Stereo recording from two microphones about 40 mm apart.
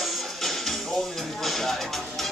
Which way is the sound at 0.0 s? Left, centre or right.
Centre.